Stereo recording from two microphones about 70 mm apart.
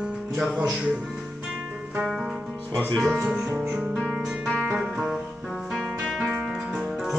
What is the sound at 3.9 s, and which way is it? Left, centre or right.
Music, centre.